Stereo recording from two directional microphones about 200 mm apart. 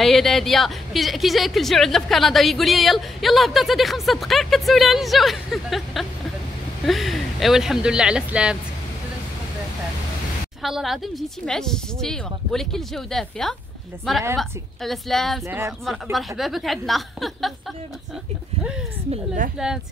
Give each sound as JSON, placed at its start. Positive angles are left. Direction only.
{"t": 0.0, "sound": "a woman's voice", "side_deg": 0}
{"t": 10.6, "sound": "a woman's voice", "side_deg": 0}
{"t": 15.4, "sound": "speech", "side_deg": -15}
{"t": 15.8, "sound": "a woman's voice", "side_deg": 0}
{"t": 18.6, "sound": "a sound", "side_deg": -5}
{"t": 19.0, "sound": "a woman's voice", "side_deg": -40}